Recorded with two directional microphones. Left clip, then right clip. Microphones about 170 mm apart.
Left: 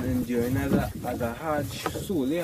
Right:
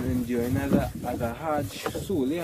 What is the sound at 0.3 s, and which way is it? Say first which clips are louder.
Speech: even; 5° left (ahead or behind).